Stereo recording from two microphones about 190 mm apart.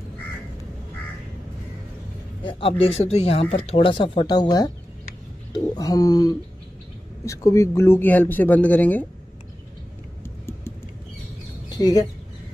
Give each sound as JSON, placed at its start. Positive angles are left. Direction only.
{"t": 2.4, "sound": "a man's voice", "side_deg": 30}
{"t": 11.7, "sound": "speech", "side_deg": 20}